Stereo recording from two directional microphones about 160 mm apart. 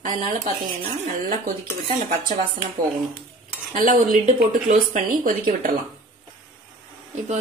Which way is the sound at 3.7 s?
60° right (ahead or behind).